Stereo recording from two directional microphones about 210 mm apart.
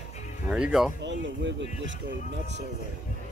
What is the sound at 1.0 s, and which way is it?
Speech, 60° right (ahead or behind).